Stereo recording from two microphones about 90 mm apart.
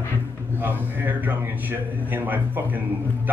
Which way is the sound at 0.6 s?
20° right (ahead or behind).